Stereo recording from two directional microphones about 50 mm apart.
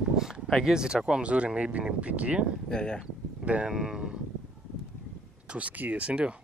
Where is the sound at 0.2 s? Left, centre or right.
Centre.